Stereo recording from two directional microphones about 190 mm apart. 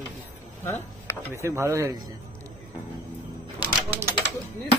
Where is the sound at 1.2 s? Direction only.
15° right (ahead or behind).